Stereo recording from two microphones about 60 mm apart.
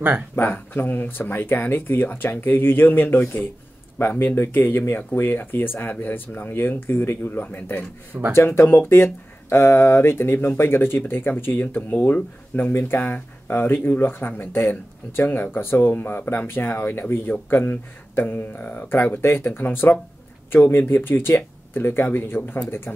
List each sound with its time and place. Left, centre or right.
0.4 s speech: left
8.1 s speech: right
8.5 s speech: left